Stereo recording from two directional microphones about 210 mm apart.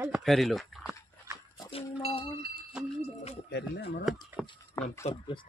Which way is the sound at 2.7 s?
5° right (ahead or behind).